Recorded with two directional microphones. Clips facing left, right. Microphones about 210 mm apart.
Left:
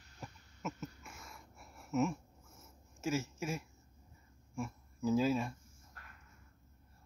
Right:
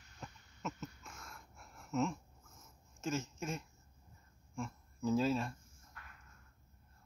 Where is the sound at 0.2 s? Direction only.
5° left (ahead or behind).